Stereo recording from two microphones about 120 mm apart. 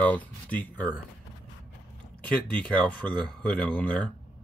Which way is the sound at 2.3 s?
10° left (ahead or behind).